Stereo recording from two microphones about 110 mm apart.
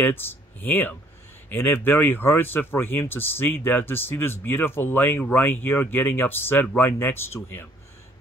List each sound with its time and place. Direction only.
0.0 s speech: 20° left (ahead or behind)